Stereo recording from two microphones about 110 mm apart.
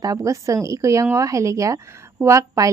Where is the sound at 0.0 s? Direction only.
30° right (ahead or behind).